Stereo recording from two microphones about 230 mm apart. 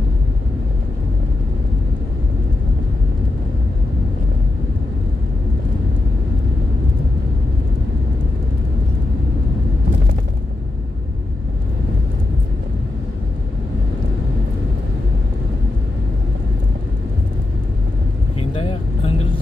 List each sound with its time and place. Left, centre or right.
18.5 s vehicle: left